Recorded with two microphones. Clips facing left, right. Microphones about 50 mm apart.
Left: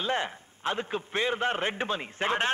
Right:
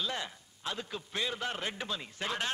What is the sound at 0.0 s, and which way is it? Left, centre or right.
A man's voice, left.